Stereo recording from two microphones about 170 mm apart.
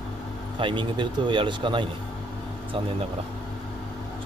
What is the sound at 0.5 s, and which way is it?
Speech, 30° right (ahead or behind).